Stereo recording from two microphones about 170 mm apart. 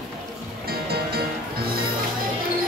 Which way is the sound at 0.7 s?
65° right (ahead or behind).